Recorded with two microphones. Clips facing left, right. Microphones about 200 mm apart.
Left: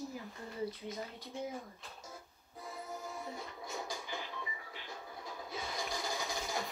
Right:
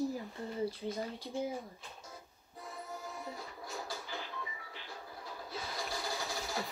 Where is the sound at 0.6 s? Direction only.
30° right (ahead or behind).